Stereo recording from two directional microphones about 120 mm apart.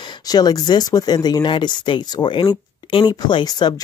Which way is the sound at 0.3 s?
35° left (ahead or behind).